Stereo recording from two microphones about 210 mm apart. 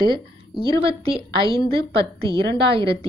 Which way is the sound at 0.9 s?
25° right (ahead or behind).